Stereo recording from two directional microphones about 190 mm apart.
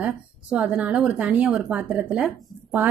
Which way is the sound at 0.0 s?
5° right (ahead or behind).